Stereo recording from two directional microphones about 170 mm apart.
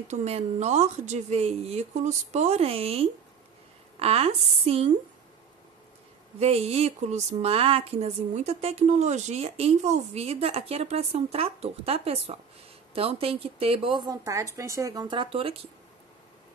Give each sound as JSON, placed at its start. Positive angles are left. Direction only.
{"t": 0.1, "sound": "speech", "side_deg": -40}
{"t": 6.4, "sound": "a woman's voice", "side_deg": -40}